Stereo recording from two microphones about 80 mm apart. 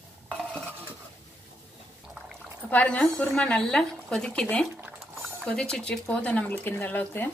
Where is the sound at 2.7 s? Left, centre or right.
Centre.